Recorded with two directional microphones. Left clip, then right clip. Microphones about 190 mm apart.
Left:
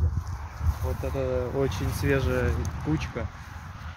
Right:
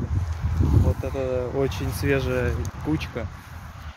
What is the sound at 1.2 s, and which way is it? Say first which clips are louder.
Speech: right 2 dB; 20° right (ahead or behind).